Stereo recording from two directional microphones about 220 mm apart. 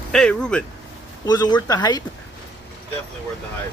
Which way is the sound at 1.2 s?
20° left (ahead or behind).